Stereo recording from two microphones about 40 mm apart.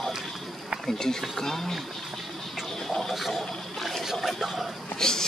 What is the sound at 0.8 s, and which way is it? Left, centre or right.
Speech, centre.